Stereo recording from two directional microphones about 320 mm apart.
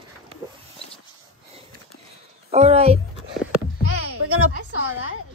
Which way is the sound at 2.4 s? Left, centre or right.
Centre.